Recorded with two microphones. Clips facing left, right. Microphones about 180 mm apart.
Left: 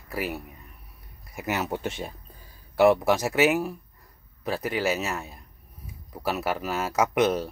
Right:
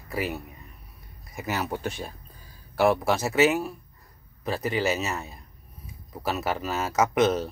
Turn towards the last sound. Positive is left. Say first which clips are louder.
# right 1 dB
turn(degrees=10)  # may be behind; listen again after turning